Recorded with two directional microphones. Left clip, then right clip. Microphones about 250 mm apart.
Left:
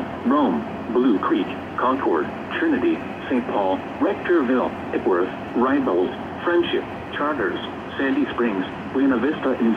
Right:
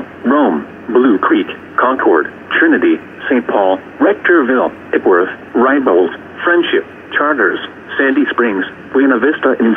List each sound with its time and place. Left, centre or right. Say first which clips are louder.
0.9 s speech: right 9 dB; right